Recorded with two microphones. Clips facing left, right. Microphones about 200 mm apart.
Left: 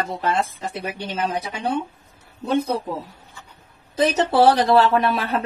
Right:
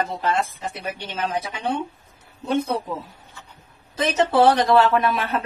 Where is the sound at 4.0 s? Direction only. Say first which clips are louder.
Left 1 dB; 35° left (ahead or behind).